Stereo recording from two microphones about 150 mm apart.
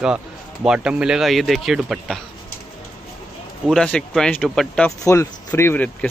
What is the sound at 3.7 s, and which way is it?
Speech, 5° left (ahead or behind).